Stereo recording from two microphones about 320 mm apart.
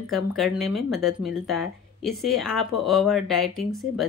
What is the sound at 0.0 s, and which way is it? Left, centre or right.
A woman's voice, centre.